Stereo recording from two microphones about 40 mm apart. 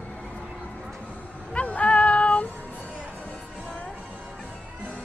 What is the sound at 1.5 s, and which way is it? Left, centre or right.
Music, left.